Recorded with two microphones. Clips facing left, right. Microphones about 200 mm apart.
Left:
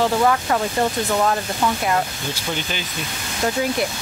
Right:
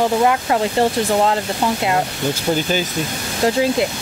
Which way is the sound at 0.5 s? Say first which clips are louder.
Right 4 dB; 25° right (ahead or behind).